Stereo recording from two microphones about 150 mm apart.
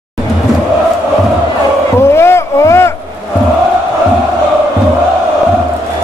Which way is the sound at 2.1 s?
15° left (ahead or behind).